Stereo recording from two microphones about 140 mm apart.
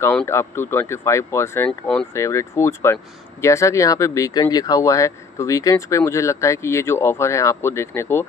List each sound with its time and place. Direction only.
0.0 s speech: 15° left (ahead or behind)
1.7 s speech: 5° left (ahead or behind)
2.1 s speech: 20° left (ahead or behind)